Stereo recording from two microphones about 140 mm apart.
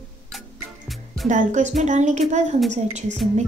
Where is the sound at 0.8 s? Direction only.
Centre (ahead or behind).